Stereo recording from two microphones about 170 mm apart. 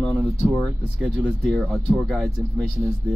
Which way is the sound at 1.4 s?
5° left (ahead or behind).